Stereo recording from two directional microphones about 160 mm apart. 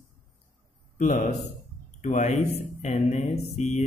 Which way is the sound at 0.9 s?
55° left (ahead or behind).